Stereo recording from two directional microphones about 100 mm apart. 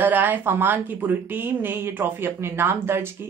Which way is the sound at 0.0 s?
20° right (ahead or behind).